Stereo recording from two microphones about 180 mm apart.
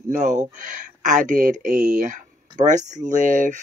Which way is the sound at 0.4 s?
45° right (ahead or behind).